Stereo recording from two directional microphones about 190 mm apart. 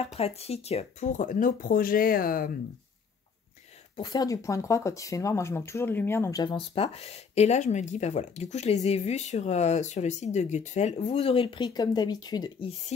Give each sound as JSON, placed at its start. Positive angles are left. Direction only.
{"t": 0.0, "sound": "speech", "side_deg": 35}
{"t": 3.9, "sound": "speech", "side_deg": 20}